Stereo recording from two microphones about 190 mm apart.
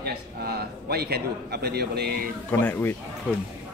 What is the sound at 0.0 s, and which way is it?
A man's voice, 55° right (ahead or behind).